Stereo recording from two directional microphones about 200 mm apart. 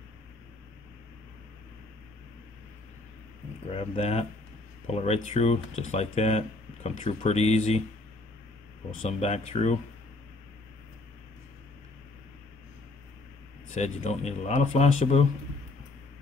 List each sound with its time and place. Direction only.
3.7 s speech: 30° left (ahead or behind)
9.2 s speech: 30° left (ahead or behind)
13.7 s speech: 35° left (ahead or behind)